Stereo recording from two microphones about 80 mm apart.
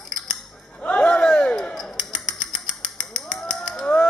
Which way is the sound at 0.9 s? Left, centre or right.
Centre.